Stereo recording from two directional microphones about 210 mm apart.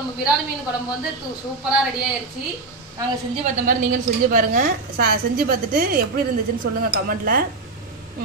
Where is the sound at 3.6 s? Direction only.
40° right (ahead or behind).